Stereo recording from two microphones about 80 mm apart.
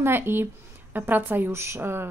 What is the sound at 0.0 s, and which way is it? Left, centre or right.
A woman's voice, right.